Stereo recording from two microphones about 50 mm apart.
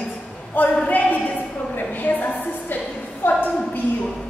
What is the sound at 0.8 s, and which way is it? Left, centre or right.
A woman's voice, left.